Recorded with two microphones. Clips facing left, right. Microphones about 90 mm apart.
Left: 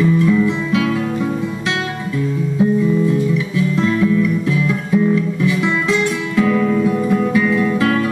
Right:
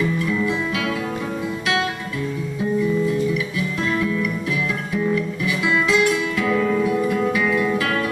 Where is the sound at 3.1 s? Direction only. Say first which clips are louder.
Left 4 dB; 30° left (ahead or behind).